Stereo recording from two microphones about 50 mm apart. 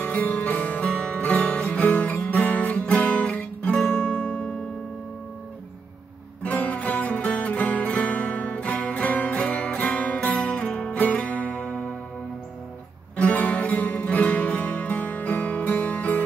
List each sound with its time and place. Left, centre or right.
0.0 s music: left
6.4 s music: left
13.1 s music: left